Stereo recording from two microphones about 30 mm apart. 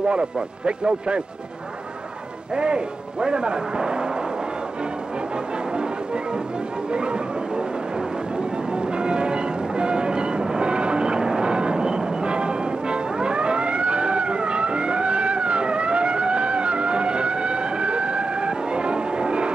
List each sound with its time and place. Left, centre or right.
0.1 s speech: right
2.5 s speech: right
6.9 s a sound: right
8.7 s train: right